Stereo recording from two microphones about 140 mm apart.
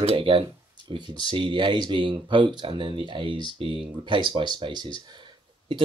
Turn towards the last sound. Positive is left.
turn(degrees=-35)  # may be behind; listen again after turning